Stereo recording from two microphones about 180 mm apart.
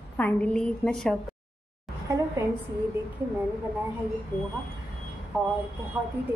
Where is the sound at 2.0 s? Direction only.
20° right (ahead or behind).